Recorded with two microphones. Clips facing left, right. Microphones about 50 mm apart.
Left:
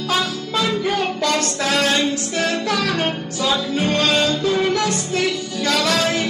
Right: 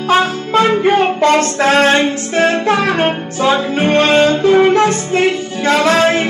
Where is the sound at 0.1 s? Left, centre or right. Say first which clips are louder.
Right 10 dB; right.